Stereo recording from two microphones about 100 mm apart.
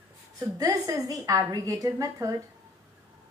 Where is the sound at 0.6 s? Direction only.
35° right (ahead or behind).